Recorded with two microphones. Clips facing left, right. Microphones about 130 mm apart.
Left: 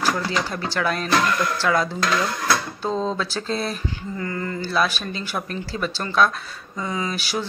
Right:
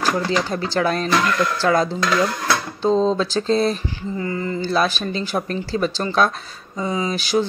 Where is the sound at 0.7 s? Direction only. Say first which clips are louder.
Right 2 dB; 30° right (ahead or behind).